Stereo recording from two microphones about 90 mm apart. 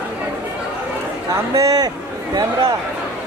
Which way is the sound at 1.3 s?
40° right (ahead or behind).